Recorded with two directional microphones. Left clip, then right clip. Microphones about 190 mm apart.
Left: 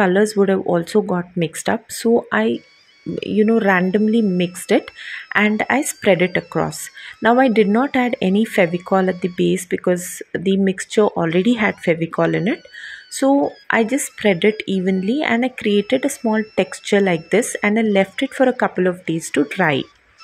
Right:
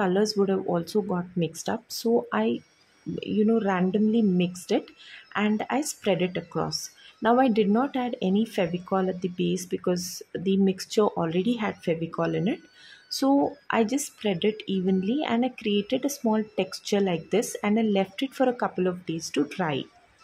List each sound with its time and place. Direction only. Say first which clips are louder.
0.4 s speech: left 9 dB; 20° left (ahead or behind)